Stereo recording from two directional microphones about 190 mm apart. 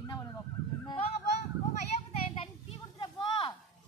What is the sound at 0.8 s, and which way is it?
Honk, 30° left (ahead or behind).